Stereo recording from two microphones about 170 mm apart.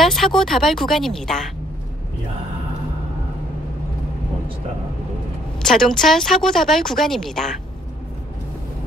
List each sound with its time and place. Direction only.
0.0 s speech: centre (ahead or behind)
5.7 s speech: 5° left (ahead or behind)